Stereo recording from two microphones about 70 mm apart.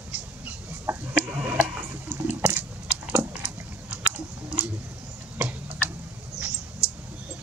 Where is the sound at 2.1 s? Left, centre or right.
Right.